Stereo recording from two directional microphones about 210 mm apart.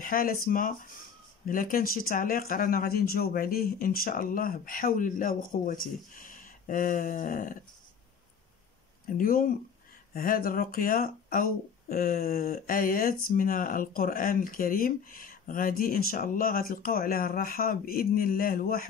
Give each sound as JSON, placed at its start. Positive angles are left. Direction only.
{"t": 0.0, "sound": "speech", "side_deg": 40}
{"t": 9.0, "sound": "speech", "side_deg": 40}